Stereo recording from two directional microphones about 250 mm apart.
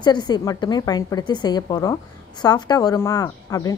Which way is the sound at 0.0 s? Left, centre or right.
Centre.